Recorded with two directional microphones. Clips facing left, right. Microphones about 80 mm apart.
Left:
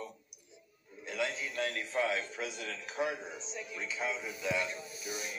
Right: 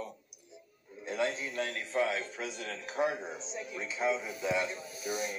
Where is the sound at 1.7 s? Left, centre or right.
Centre.